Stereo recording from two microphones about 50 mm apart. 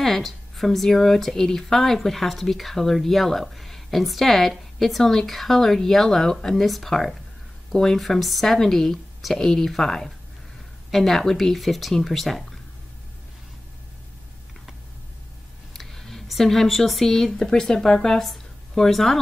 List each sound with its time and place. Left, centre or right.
0.0 s speech: centre
15.7 s speech: centre